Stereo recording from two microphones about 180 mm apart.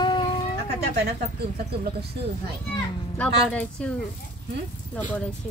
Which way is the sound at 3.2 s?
5° left (ahead or behind).